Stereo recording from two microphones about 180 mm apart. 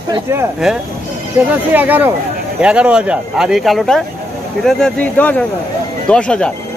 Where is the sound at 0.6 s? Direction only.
5° right (ahead or behind).